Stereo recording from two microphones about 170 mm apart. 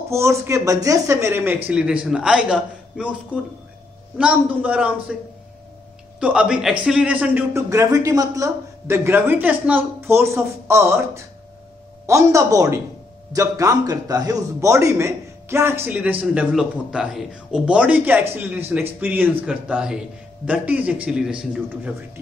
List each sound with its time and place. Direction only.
0.1 s a man's voice: 15° right (ahead or behind)
4.2 s a man's voice: 10° right (ahead or behind)
6.1 s a man's voice: 5° right (ahead or behind)